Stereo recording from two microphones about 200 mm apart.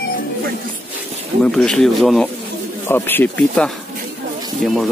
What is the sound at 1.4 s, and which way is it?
Speech, 5° left (ahead or behind).